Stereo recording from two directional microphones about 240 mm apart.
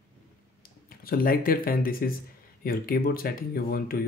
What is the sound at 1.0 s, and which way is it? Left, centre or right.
Speech, left.